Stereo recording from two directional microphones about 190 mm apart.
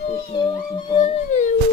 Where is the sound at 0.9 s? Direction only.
35° left (ahead or behind).